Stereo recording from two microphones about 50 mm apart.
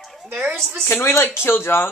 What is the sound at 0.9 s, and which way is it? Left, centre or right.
A man's voice, left.